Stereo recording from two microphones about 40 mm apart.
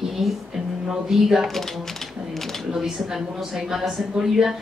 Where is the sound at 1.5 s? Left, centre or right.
Centre.